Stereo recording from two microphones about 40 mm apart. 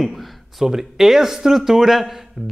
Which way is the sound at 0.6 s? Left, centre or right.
Centre.